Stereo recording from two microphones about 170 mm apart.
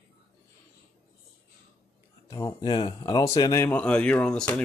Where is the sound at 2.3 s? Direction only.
25° left (ahead or behind).